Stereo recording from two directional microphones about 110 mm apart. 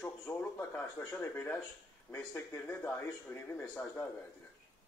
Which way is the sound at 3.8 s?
15° left (ahead or behind).